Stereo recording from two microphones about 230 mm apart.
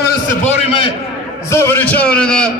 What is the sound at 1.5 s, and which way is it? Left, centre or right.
A man's voice, centre.